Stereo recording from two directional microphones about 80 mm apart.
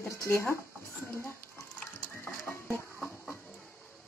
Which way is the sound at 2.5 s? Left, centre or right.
Centre.